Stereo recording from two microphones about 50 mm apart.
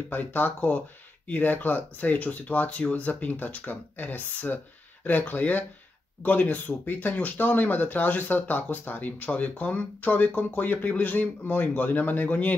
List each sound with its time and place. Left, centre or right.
0.1 s speech: left